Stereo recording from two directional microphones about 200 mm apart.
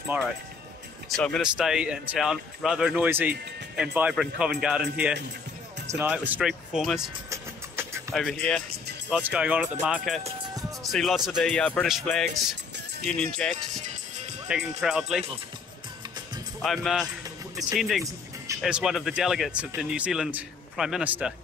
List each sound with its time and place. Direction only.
0.1 s speech: 10° right (ahead or behind)
1.0 s speech: 5° left (ahead or behind)
7.2 s vehicle: 15° right (ahead or behind)
8.1 s speech: centre (ahead or behind)
10.2 s music: 25° right (ahead or behind)
10.8 s speech: centre (ahead or behind)
14.8 s speech: centre (ahead or behind)
16.6 s speech: centre (ahead or behind)